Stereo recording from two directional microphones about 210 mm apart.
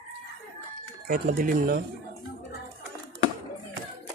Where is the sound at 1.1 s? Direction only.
40° right (ahead or behind).